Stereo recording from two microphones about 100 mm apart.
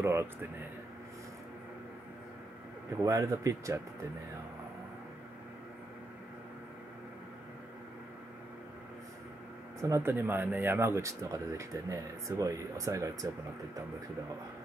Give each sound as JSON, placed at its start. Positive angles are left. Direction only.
{"t": 0.0, "sound": "speech", "side_deg": -25}
{"t": 3.0, "sound": "speech", "side_deg": -30}
{"t": 9.8, "sound": "speech", "side_deg": -30}